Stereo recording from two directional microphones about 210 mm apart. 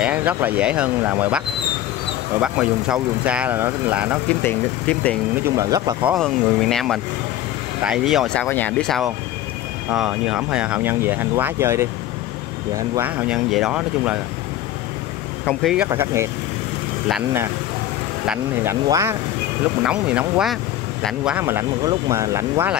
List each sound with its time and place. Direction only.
0.0 s speech: 5° right (ahead or behind)
2.4 s speech: 5° right (ahead or behind)
4.3 s speech: 5° left (ahead or behind)
5.3 s speech: 15° right (ahead or behind)
6.0 s speech: centre (ahead or behind)
15.6 s speech: 5° right (ahead or behind)
18.2 s speech: 10° right (ahead or behind)